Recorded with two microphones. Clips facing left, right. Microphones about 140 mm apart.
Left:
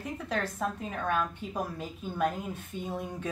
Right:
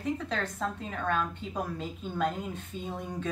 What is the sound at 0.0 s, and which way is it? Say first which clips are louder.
A woman's voice: right 1 dB; 10° left (ahead or behind).